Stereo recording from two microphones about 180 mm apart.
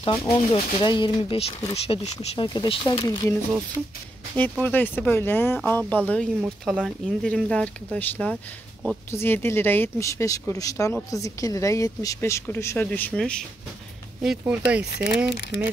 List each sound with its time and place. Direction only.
0.7 s speech: 25° left (ahead or behind)
3.8 s a woman's voice: centre (ahead or behind)